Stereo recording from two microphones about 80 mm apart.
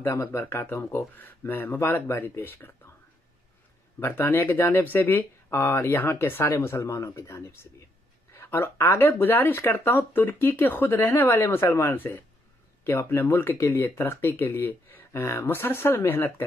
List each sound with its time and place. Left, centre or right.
0.0 s speech: left
4.0 s speech: left